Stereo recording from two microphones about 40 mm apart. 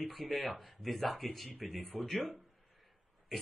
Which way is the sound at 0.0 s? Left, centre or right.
Centre.